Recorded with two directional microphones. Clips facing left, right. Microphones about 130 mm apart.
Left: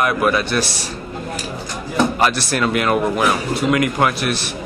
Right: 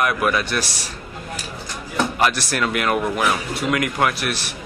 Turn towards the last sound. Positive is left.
turn(degrees=25)  # may be behind; listen again after turning